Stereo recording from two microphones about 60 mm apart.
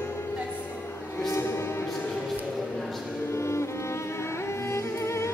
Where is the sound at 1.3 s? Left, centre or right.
Left.